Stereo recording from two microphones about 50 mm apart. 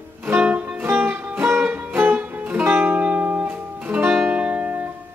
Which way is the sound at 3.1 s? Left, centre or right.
Right.